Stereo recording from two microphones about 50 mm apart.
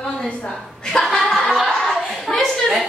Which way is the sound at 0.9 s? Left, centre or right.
Centre.